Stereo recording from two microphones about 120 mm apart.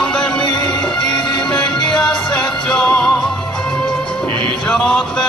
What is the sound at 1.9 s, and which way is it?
Music, 5° left (ahead or behind).